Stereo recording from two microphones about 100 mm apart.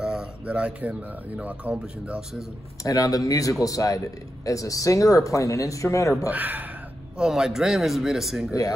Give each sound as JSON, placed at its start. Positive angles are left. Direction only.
{"t": 0.0, "sound": "speech", "side_deg": -10}
{"t": 2.8, "sound": "speech", "side_deg": 35}
{"t": 6.2, "sound": "speech", "side_deg": -15}
{"t": 7.2, "sound": "a man's voice", "side_deg": -5}